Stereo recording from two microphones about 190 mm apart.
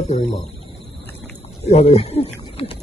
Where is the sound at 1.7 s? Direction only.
35° left (ahead or behind).